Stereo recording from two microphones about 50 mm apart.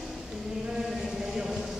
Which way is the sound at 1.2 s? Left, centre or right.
Centre.